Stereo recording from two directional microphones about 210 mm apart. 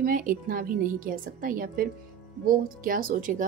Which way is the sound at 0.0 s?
40° right (ahead or behind).